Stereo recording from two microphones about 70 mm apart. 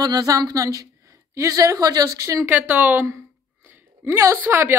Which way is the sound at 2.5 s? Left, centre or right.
Right.